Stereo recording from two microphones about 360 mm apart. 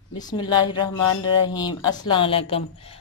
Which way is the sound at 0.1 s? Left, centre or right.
Centre.